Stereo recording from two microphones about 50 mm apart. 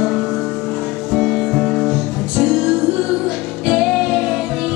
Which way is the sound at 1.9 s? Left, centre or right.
Centre.